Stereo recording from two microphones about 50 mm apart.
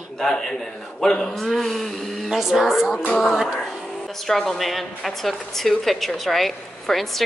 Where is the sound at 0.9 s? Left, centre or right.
Centre.